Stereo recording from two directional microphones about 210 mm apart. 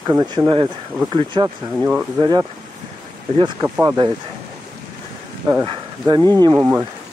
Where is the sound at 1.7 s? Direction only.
5° right (ahead or behind).